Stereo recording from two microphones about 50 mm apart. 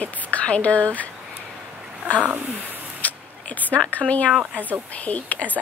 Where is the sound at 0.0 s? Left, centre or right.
Left.